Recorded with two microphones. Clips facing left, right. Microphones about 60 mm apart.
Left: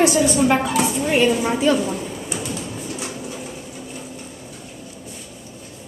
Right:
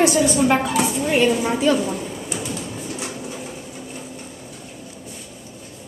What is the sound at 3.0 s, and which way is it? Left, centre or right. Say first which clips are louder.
Bird: even; right.